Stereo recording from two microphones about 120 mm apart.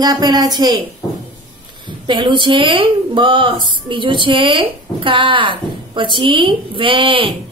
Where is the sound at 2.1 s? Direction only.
40° right (ahead or behind).